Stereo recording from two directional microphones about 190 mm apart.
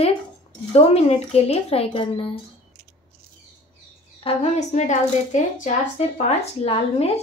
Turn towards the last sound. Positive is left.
turn(degrees=30)  # may be behind; listen again after turning